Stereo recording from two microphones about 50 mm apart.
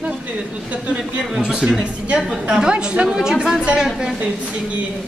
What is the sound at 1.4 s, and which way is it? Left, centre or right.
A woman's voice, centre.